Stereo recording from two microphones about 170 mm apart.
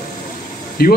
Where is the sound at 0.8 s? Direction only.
65° left (ahead or behind).